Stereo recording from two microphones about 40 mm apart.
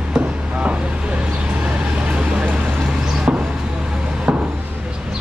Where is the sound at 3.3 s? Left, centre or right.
Right.